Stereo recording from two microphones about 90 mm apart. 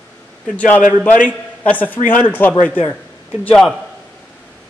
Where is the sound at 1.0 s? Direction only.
15° left (ahead or behind).